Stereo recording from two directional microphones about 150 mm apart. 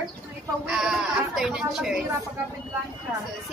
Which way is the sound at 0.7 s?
5° right (ahead or behind).